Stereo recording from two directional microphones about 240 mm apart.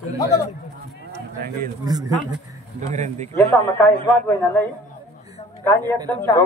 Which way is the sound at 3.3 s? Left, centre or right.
Centre.